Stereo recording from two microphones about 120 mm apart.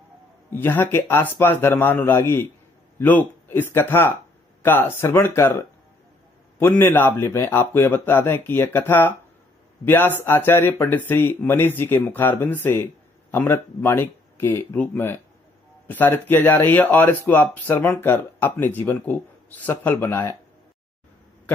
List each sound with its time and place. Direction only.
0.5 s a man's voice: 20° left (ahead or behind)